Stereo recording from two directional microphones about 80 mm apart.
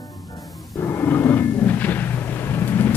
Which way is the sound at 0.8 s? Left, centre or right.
Left.